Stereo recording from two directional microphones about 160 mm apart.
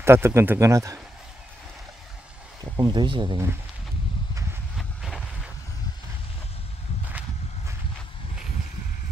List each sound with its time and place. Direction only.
0.0 s speech: 15° right (ahead or behind)
2.6 s speech: 25° right (ahead or behind)
4.7 s vehicle: centre (ahead or behind)
7.1 s horse: 10° right (ahead or behind)